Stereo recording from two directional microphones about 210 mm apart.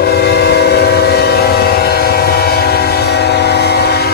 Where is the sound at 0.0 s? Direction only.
50° left (ahead or behind).